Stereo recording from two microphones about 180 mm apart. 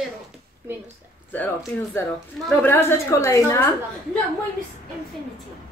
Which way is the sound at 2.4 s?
10° left (ahead or behind).